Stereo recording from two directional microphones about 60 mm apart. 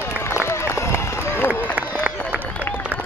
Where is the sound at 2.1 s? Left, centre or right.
Right.